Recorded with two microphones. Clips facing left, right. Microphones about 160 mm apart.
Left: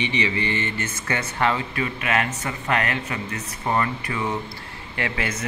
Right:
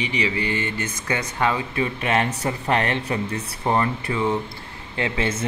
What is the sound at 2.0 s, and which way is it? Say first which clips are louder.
Speech: right 2 dB; 30° right (ahead or behind).